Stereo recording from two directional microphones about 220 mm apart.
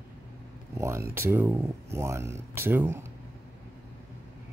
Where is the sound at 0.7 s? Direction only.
10° right (ahead or behind).